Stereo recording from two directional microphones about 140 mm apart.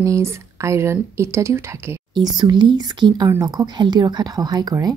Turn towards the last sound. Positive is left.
turn(degrees=-30)  # may be behind; listen again after turning